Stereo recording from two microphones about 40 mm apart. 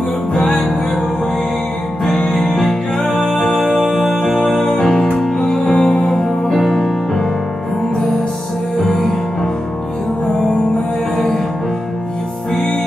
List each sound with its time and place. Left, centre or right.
0.5 s music: centre
2.0 s music: centre
4.7 s music: centre
8.7 s music: centre